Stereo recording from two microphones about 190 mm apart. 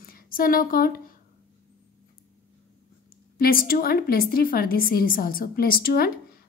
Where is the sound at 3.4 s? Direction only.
50° left (ahead or behind).